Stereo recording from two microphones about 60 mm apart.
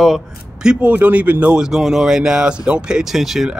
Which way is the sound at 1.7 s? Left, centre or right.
Centre.